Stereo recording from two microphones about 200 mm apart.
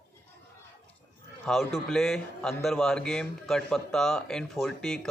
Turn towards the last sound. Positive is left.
turn(degrees=0)  # may be behind; listen again after turning